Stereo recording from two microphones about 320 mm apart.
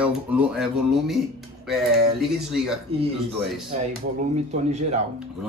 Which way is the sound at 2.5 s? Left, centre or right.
Centre.